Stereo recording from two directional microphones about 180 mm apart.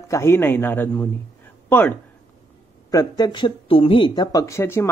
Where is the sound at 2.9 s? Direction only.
20° left (ahead or behind).